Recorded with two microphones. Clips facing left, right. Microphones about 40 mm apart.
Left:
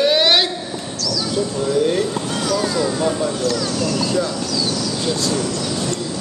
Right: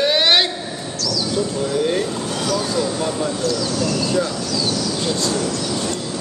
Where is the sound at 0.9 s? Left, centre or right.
Right.